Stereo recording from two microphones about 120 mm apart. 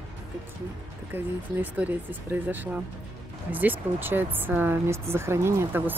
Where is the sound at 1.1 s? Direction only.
15° right (ahead or behind).